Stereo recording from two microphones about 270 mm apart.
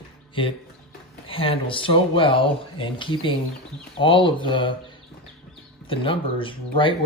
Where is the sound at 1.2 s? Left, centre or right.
Centre.